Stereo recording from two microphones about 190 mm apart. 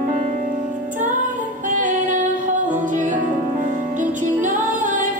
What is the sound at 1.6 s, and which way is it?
Music, 40° right (ahead or behind).